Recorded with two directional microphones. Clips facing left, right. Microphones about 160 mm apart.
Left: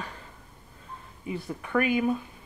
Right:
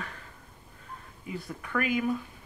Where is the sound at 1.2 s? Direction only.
25° left (ahead or behind).